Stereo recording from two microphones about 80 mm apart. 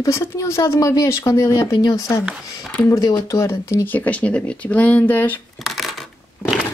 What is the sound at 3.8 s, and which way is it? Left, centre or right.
Speech, left.